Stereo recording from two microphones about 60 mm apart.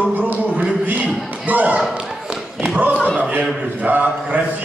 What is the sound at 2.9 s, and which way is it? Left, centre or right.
Speech, centre.